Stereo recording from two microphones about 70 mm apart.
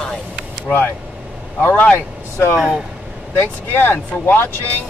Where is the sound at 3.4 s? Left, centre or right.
Left.